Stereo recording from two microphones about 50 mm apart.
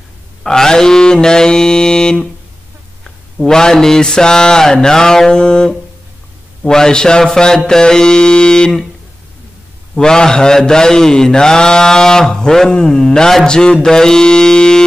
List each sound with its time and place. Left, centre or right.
0.4 s mantra: centre
9.9 s mantra: centre